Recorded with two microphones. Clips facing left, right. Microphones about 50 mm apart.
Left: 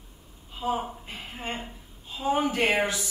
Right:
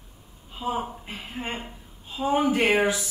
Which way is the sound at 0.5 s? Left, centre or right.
Centre.